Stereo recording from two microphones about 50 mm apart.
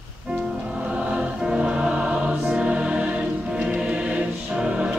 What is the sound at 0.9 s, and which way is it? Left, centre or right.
Music, right.